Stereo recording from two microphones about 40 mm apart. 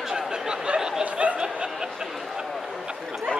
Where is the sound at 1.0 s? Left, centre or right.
Right.